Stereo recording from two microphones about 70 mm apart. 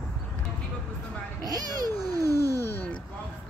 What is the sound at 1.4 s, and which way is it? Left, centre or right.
Cat, right.